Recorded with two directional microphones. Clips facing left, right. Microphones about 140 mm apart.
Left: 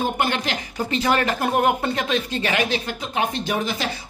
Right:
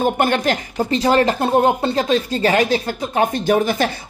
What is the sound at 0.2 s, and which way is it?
Speech, 45° right (ahead or behind).